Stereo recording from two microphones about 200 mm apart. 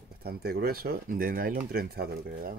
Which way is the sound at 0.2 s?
50° right (ahead or behind).